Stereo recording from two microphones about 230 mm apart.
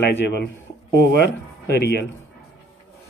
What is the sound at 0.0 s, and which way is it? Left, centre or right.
Speech, left.